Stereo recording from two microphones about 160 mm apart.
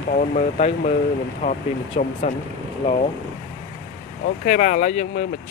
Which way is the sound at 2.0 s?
45° left (ahead or behind).